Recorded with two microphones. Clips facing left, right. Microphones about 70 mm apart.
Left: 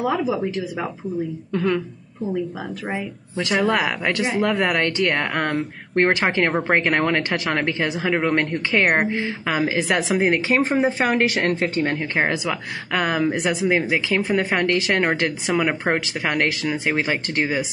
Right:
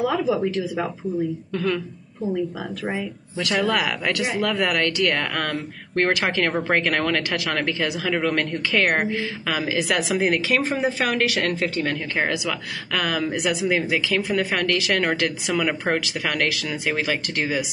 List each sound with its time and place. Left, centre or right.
1.5 s speech: centre
3.6 s speech: left